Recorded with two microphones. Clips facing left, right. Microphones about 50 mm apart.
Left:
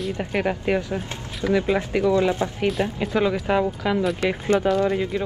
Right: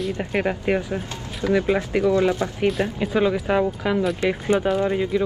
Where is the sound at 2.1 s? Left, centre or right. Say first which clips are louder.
Right 1 dB; left.